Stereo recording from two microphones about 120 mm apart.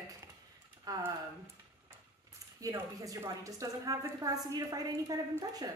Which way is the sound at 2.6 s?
30° right (ahead or behind).